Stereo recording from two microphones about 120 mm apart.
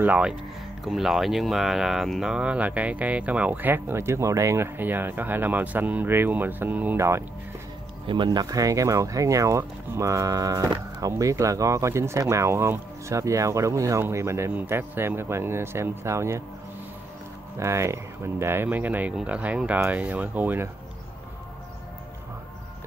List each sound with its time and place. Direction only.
0.0 s speech: 10° right (ahead or behind)
8.1 s speech: 40° right (ahead or behind)
17.6 s speech: 25° right (ahead or behind)